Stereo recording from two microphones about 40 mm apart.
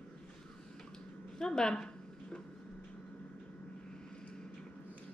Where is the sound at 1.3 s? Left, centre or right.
Centre.